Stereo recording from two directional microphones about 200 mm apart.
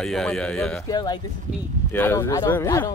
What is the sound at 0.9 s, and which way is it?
Speech, 20° left (ahead or behind).